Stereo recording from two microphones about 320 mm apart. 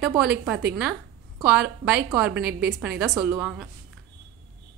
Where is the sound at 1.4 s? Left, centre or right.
Centre.